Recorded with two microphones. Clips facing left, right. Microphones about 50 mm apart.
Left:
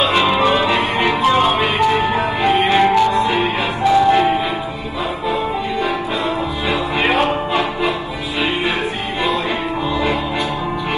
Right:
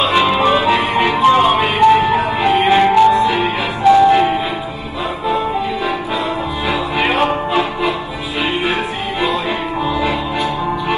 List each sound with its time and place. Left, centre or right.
0.1 s music: centre